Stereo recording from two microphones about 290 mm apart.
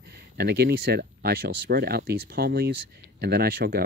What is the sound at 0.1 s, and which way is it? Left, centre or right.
Speech, right.